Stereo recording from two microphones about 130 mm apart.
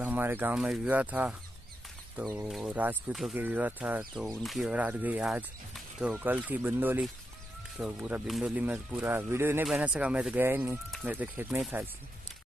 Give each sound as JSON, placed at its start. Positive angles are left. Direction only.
{"t": 0.0, "sound": "speech", "side_deg": -15}
{"t": 2.4, "sound": "speech", "side_deg": -10}
{"t": 3.1, "sound": "speech", "side_deg": 0}
{"t": 3.3, "sound": "speech", "side_deg": -15}
{"t": 4.4, "sound": "speech", "side_deg": 0}
{"t": 5.7, "sound": "a sound", "side_deg": 0}
{"t": 6.1, "sound": "speech", "side_deg": -15}